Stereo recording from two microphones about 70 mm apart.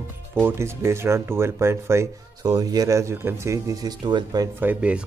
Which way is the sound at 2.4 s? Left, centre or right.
Right.